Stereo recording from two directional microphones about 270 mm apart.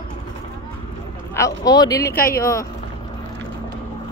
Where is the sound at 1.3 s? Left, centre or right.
Centre.